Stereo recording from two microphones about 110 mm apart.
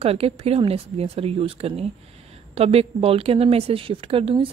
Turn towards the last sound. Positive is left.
turn(degrees=-55)  # may be behind; listen again after turning